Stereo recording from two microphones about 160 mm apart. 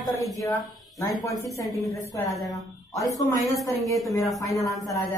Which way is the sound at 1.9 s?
20° left (ahead or behind).